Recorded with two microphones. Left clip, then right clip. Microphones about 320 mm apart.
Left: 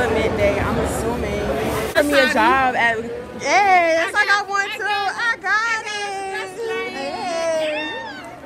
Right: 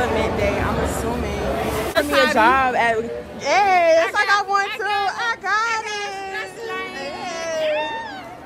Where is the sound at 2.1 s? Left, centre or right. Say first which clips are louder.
Even; right.